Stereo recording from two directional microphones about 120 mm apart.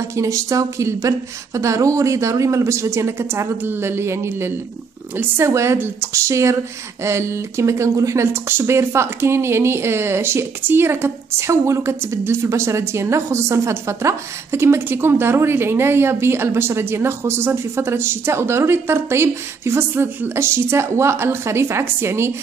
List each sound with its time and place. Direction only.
0.1 s a woman's voice: 25° right (ahead or behind)